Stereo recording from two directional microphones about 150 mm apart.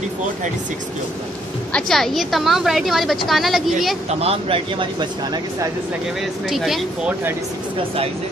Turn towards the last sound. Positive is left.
turn(degrees=0)  # may be behind; listen again after turning